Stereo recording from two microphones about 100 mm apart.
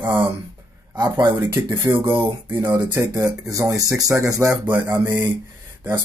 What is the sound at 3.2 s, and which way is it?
Speech, 35° right (ahead or behind).